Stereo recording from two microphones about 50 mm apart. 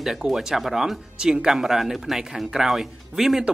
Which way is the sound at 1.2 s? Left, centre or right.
Centre.